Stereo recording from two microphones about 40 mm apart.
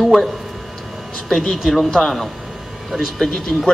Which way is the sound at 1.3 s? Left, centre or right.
Centre.